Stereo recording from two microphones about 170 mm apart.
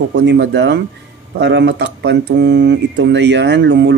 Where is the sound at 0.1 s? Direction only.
90° right.